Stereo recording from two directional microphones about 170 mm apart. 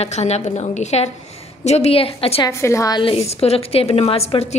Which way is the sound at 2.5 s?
15° left (ahead or behind).